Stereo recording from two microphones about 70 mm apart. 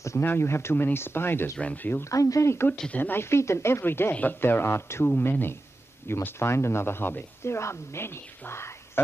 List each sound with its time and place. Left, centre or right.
0.2 s speech: left
1.6 s speech: centre
2.0 s speech: left
2.9 s speech: left
4.1 s speech: left